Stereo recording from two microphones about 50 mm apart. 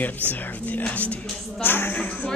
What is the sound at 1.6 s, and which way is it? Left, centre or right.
Speech, left.